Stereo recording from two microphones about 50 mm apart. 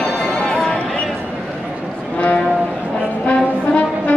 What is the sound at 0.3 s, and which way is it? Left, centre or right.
Music, centre.